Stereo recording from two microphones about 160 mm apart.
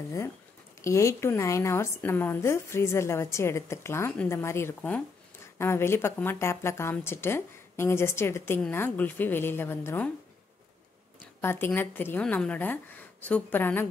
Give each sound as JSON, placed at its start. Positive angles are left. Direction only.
{"t": 0.8, "sound": "a woman's voice", "side_deg": 20}
{"t": 11.4, "sound": "a woman's voice", "side_deg": 15}